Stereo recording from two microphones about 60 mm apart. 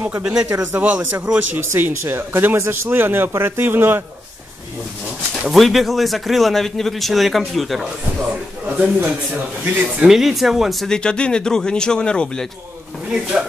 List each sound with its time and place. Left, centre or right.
0.2 s speech: centre
0.5 s speech: right
0.7 s a man's voice: right
1.8 s a man's voice: right
5.5 s speech: centre
9.0 s a man's voice: right
9.9 s speech: centre
10.9 s a man's voice: centre
13.1 s speech: centre